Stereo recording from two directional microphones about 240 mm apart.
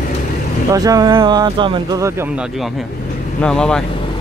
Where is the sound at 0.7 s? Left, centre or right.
Centre.